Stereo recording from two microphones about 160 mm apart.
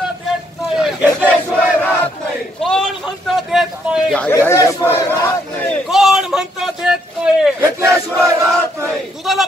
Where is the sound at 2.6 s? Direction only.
5° left (ahead or behind).